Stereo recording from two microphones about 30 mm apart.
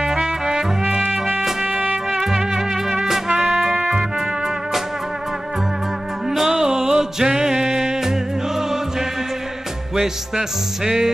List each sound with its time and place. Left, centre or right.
0.0 s music: right
2.0 s music: centre
3.3 s music: right
3.7 s music: right
6.5 s music: right
10.8 s music: centre